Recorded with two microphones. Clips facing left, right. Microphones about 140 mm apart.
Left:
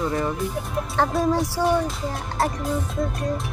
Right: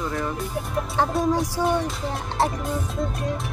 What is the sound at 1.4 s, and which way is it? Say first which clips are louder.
Speech: left 2 dB; centre (ahead or behind).